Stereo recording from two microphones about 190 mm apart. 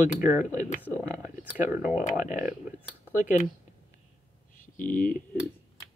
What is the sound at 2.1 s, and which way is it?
Speech, 45° left (ahead or behind).